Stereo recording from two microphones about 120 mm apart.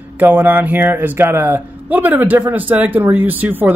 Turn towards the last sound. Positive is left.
turn(degrees=-15)  # may be behind; listen again after turning